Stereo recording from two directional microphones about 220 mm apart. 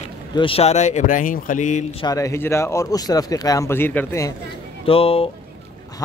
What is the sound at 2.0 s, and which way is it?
Speech, 15° left (ahead or behind).